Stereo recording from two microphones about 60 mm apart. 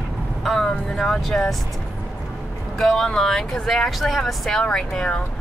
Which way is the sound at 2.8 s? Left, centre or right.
Centre.